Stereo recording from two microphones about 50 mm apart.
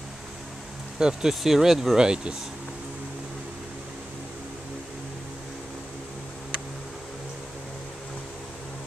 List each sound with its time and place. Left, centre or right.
0.9 s speech: centre